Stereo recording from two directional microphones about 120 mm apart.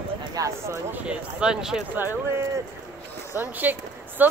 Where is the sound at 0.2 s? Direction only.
30° right (ahead or behind).